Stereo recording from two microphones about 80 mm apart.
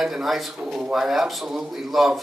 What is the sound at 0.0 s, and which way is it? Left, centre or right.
Speech, centre.